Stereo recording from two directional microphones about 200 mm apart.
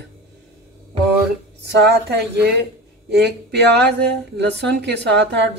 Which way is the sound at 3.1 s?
55° right (ahead or behind).